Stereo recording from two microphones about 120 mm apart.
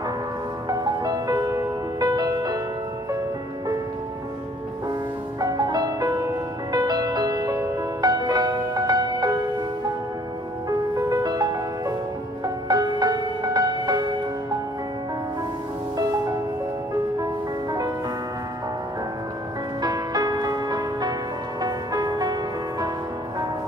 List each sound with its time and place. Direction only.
0.7 s music: 30° right (ahead or behind)
5.4 s music: 35° right (ahead or behind)
10.7 s music: 30° right (ahead or behind)
17.2 s music: 30° right (ahead or behind)
19.8 s music: 35° right (ahead or behind)